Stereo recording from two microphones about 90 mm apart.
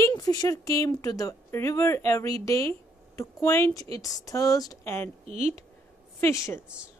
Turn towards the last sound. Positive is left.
turn(degrees=30)  # may be behind; listen again after turning